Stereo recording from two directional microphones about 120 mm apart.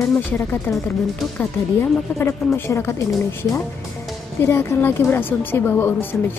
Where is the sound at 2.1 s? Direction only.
20° left (ahead or behind).